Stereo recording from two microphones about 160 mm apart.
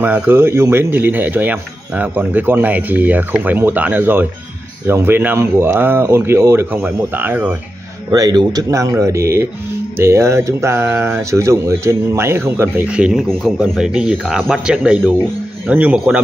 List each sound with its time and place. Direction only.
0.0 s speech: 10° right (ahead or behind)
8.1 s a man's voice: 25° right (ahead or behind)